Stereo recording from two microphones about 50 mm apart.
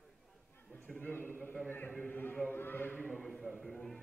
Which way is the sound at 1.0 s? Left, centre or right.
Left.